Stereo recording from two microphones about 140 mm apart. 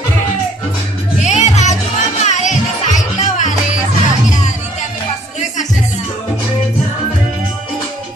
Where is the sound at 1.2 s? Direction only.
55° left (ahead or behind).